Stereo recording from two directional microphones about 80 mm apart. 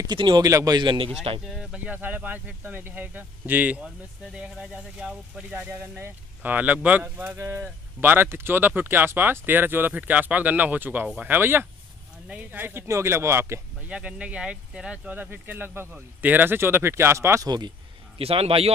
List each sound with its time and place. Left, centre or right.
0.0 s speech: right
0.5 s a man's voice: right
0.7 s a man's voice: right
1.1 s speech: centre
1.9 s speech: right
4.9 s speech: centre; by 13.6 s right
13.8 s speech: centre; by 17.4 s right
17.4 s speech: right